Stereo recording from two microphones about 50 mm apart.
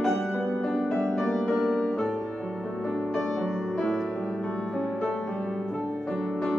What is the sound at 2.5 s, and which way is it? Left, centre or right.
Music, centre.